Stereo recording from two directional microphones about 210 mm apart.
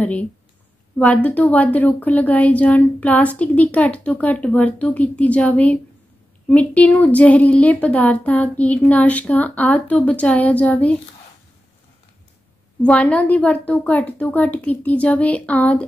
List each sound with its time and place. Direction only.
0.0 s speech: 5° left (ahead or behind)
12.8 s speech: 5° left (ahead or behind)